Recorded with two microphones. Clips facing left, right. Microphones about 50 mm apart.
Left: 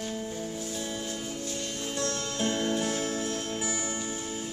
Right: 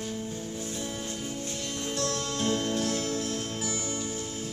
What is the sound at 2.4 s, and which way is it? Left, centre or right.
Music, centre.